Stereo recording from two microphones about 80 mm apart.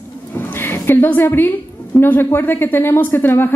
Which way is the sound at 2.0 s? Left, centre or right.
Left.